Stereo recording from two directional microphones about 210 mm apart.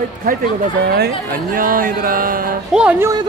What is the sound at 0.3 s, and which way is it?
Speech, 40° right (ahead or behind).